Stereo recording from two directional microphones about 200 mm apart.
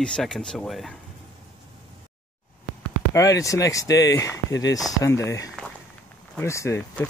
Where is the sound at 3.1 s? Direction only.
15° left (ahead or behind).